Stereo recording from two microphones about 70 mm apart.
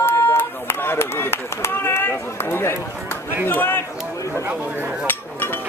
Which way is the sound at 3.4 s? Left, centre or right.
Left.